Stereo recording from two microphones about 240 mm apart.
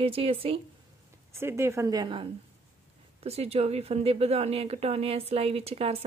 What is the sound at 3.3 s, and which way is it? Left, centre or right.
Speech, right.